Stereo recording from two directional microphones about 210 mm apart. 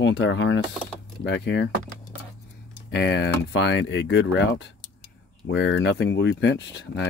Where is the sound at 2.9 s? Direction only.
55° left (ahead or behind).